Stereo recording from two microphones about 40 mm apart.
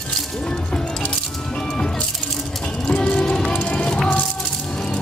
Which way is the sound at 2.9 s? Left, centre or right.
Left.